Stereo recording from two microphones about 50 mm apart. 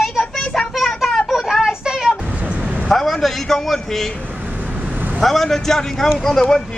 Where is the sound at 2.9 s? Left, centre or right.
Centre.